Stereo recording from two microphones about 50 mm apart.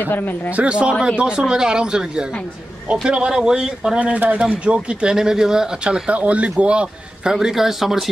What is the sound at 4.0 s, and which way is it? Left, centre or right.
Speech, right.